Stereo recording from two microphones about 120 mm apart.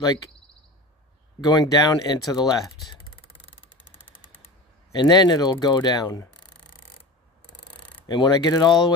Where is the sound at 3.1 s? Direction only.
50° left (ahead or behind).